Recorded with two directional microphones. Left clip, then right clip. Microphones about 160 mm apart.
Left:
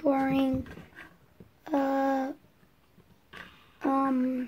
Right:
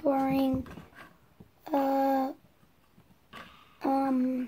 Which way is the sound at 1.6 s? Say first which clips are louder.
Right 1 dB; 10° right (ahead or behind).